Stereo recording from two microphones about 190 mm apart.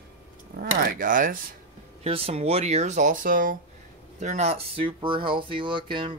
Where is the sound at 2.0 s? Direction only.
30° right (ahead or behind); by 3.6 s 45° right (ahead or behind).